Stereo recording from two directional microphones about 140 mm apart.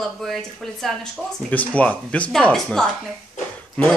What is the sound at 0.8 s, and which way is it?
A woman's voice, 5° left (ahead or behind).